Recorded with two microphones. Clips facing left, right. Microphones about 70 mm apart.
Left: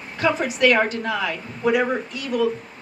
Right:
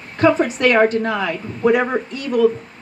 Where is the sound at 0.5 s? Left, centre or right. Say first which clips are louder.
Right 4 dB; right.